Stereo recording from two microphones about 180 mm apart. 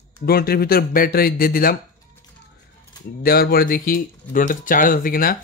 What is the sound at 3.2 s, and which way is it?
Speech, 60° left (ahead or behind).